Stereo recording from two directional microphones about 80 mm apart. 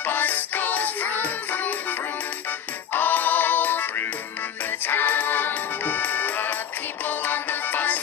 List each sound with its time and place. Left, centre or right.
0.0 s music: left